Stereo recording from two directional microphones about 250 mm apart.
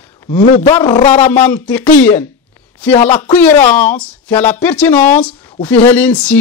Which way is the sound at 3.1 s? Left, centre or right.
Centre.